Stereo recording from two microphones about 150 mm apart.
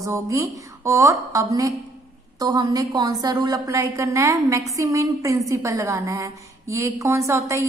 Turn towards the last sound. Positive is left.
turn(degrees=-20)  # may be behind; listen again after turning